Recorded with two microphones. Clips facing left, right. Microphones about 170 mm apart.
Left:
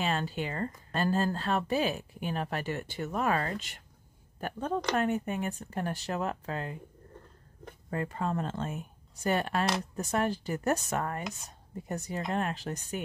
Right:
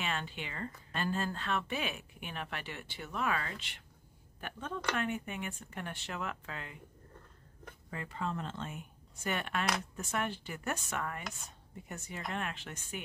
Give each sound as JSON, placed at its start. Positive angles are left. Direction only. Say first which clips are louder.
{"t": 0.0, "sound": "speech", "louder": "left 7 dB", "side_deg": 35}
{"t": 7.9, "sound": "speech", "louder": "left 6 dB", "side_deg": 45}